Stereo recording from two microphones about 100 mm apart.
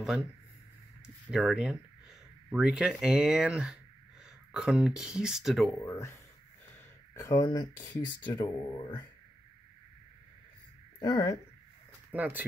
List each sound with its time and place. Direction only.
1.3 s speech: 5° right (ahead or behind)
5.8 s speech: 25° left (ahead or behind)
7.2 s speech: 35° left (ahead or behind)
7.9 s speech: 50° left (ahead or behind)
11.0 s speech: 40° left (ahead or behind)
12.1 s speech: 15° right (ahead or behind)